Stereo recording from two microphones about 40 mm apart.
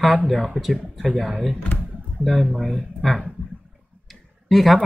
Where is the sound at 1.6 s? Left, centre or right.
Left.